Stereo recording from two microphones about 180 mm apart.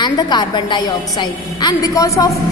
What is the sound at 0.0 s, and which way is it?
A woman's voice, 25° left (ahead or behind).